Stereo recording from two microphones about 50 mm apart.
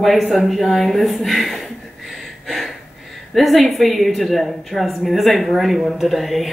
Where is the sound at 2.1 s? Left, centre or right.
Centre.